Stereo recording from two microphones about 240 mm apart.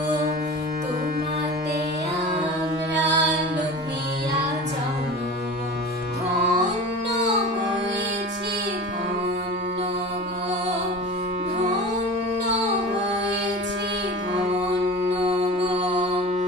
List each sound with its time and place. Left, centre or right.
3.0 s music: right
15.2 s mantra: right